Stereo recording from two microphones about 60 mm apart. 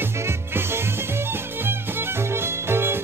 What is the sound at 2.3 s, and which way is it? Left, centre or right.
Music, right.